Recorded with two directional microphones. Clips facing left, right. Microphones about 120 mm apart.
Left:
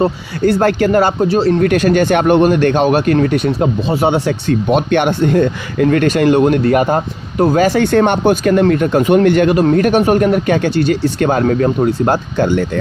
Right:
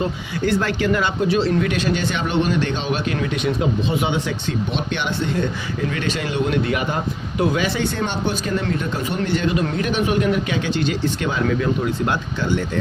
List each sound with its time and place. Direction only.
0.5 s speech: 50° left (ahead or behind)
1.6 s speech: 50° left (ahead or behind)
9.6 s speech: 45° left (ahead or behind)